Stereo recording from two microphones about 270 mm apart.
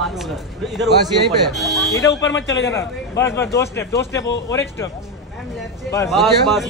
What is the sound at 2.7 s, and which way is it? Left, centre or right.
A man's voice, centre.